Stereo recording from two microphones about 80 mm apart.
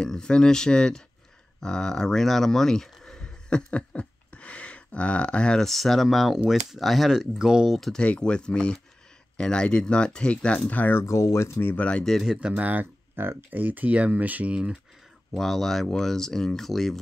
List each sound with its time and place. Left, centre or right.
0.0 s speech: centre
7.9 s speech: centre
10.7 s speech: left
11.7 s speech: centre
12.0 s speech: centre
12.3 s speech: centre
15.3 s speech: centre